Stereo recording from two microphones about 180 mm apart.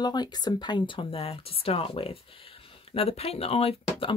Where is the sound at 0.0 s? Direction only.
20° left (ahead or behind).